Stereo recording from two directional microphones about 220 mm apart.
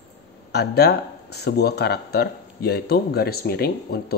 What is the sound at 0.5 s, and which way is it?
Speech, 50° left (ahead or behind).